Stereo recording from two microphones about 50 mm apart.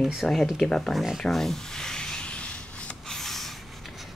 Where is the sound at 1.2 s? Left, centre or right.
Centre; by 2.5 s left.